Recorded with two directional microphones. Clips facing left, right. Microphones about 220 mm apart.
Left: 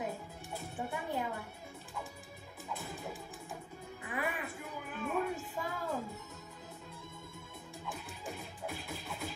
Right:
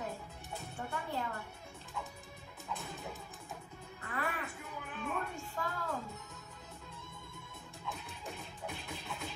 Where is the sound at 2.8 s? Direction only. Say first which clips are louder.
Left 2 dB; 5° left (ahead or behind).